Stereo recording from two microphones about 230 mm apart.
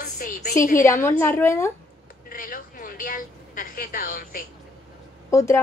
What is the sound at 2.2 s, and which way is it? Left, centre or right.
A woman's voice, left.